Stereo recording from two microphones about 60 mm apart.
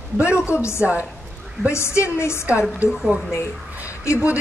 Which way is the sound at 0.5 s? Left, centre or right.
Left.